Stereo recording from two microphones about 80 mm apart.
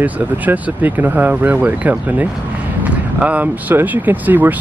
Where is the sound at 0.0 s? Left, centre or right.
Right.